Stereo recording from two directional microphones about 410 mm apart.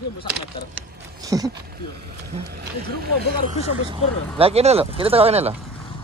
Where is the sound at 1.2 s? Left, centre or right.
Centre.